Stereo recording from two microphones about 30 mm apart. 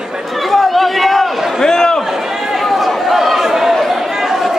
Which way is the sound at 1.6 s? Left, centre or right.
Centre.